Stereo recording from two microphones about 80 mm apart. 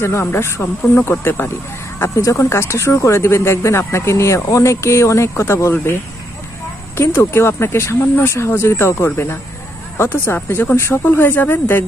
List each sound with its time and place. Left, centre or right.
0.2 s speech: left
2.0 s speech: left
7.3 s speech: left